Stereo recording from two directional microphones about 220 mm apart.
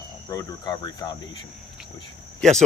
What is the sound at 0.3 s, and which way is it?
Cricket, 15° left (ahead or behind).